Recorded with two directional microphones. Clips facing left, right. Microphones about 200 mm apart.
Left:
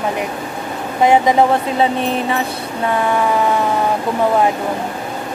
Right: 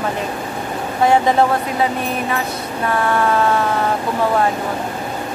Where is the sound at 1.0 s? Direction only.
15° left (ahead or behind).